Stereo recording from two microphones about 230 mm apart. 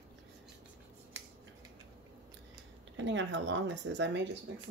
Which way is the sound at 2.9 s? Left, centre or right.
Right.